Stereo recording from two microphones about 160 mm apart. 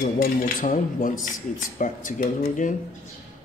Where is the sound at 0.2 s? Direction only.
55° left (ahead or behind).